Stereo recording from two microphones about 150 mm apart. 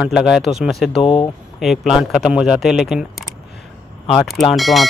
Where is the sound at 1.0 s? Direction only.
35° left (ahead or behind).